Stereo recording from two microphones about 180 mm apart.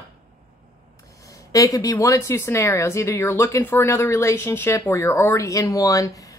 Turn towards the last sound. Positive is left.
turn(degrees=20)  # may be behind; listen again after turning